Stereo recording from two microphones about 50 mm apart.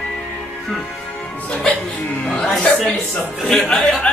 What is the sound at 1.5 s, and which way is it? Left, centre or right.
Speech, centre.